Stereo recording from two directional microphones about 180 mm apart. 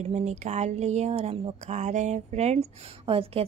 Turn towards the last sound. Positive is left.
turn(degrees=-35)  # may be behind; listen again after turning